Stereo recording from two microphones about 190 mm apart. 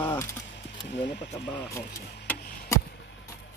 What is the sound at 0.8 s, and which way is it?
Speech, 65° left (ahead or behind).